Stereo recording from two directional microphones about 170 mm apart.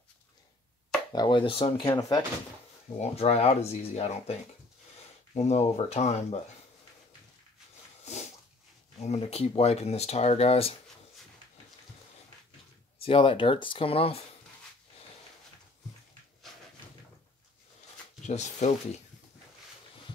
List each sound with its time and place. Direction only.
1.1 s speech: 25° left (ahead or behind)
1.9 s speech: 20° left (ahead or behind)
3.0 s speech: 35° left (ahead or behind)
8.0 s sneeze: 40° left (ahead or behind)
9.0 s speech: 40° left (ahead or behind)
13.0 s speech: 30° left (ahead or behind)
18.2 s speech: 45° left (ahead or behind)